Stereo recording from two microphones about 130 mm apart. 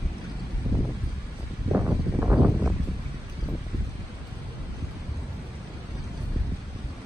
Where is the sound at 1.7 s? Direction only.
15° right (ahead or behind).